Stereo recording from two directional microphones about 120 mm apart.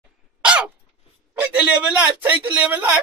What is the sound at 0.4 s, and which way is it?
Cough, 10° right (ahead or behind).